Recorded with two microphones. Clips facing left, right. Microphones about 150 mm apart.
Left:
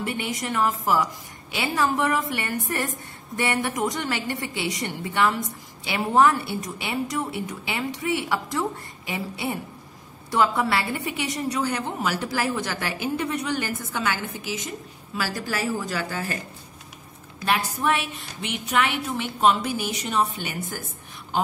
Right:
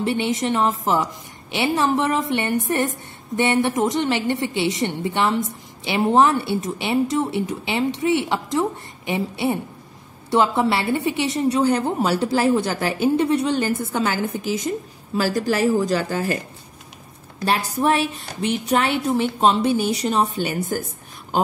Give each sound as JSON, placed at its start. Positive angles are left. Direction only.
{"t": 0.0, "sound": "a woman's voice", "side_deg": -25}
{"t": 17.5, "sound": "a woman's voice", "side_deg": -35}